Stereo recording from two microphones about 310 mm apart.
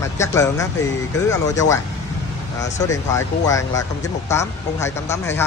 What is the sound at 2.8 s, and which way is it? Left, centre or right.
Speech, centre.